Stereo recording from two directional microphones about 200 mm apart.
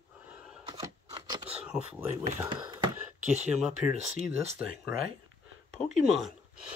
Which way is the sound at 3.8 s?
10° right (ahead or behind).